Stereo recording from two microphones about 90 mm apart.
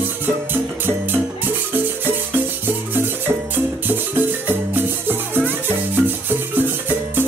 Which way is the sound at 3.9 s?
20° right (ahead or behind).